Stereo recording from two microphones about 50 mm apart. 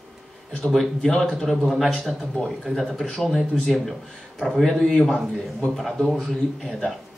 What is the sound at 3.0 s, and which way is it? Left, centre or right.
A man's voice, centre.